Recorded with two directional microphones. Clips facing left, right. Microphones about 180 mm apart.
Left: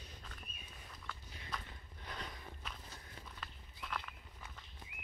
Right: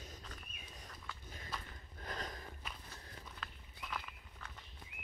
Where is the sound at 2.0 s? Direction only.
45° right (ahead or behind).